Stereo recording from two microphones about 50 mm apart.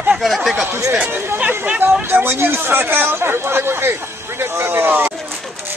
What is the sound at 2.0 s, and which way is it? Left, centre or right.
Speech, right.